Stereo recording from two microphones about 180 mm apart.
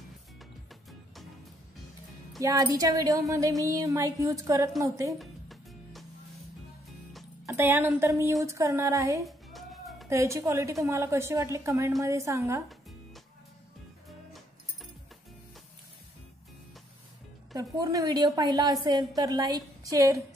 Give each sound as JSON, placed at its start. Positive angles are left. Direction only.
{"t": 2.4, "sound": "speech", "side_deg": -20}
{"t": 5.2, "sound": "music", "side_deg": 0}
{"t": 7.4, "sound": "a woman's voice", "side_deg": -10}
{"t": 9.2, "sound": "music", "side_deg": 0}
{"t": 10.0, "sound": "a woman's voice", "side_deg": -15}
{"t": 17.6, "sound": "speech", "side_deg": -20}